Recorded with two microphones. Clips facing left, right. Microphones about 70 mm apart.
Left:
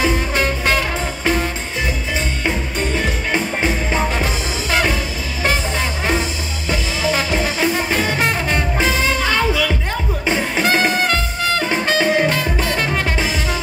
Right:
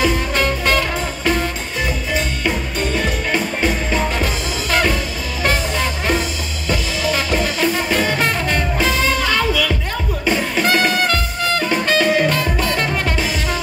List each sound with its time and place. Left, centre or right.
0.0 s music: left